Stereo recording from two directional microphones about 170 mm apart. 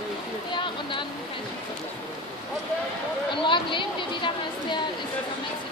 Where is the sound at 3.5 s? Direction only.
30° left (ahead or behind).